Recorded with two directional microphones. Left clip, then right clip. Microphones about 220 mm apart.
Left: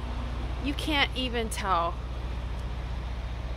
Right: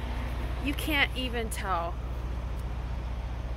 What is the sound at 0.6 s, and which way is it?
Speech, 20° left (ahead or behind).